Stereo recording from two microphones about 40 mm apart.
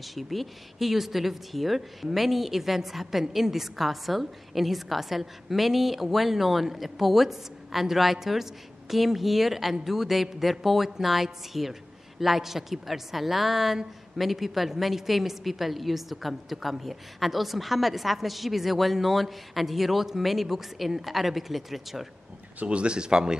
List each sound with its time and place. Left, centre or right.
0.1 s a woman's voice: centre
22.7 s speech: right